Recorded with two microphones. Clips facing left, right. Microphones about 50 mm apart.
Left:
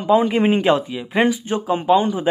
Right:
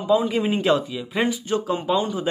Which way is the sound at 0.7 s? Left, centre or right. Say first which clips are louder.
Left 3 dB; left.